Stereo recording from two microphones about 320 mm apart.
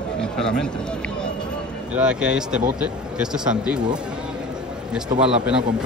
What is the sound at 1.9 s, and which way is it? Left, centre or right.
Speech, centre.